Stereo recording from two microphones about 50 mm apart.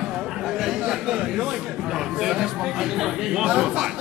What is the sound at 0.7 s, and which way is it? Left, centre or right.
Speech, centre.